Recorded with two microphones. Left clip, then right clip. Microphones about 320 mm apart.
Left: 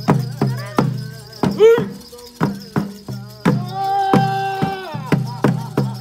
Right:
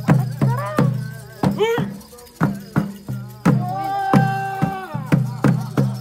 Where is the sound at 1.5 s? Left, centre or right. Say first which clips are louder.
Left 10 dB; centre.